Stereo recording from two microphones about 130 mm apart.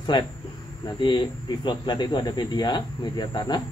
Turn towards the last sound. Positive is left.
turn(degrees=35)  # may be behind; listen again after turning